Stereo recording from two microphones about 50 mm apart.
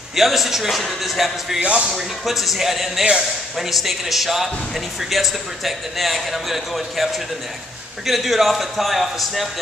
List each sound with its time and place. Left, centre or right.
0.1 s a man's voice: centre
1.6 s speech: right
2.0 s a man's voice: centre